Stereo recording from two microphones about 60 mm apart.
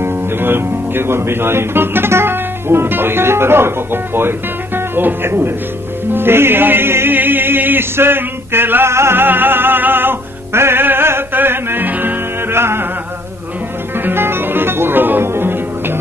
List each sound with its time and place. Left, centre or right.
0.0 s speech: right
6.1 s music: right
13.9 s music: right